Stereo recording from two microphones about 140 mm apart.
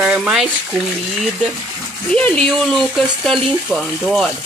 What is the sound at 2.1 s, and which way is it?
Speech, 5° left (ahead or behind).